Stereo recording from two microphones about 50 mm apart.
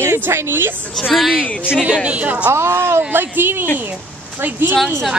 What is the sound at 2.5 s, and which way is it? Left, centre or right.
Speech, right.